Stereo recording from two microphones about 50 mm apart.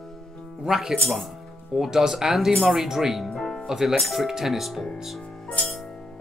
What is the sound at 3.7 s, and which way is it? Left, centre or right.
Speech, centre.